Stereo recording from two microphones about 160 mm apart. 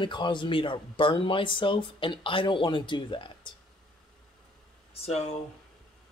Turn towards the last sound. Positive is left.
turn(degrees=40)  # may be behind; listen again after turning